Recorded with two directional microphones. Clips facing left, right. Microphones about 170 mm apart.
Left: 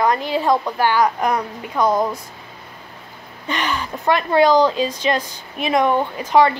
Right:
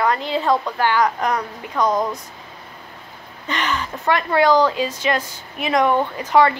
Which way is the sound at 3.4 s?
10° left (ahead or behind).